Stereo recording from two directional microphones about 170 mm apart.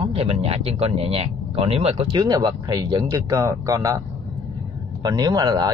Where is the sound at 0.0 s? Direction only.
35° right (ahead or behind).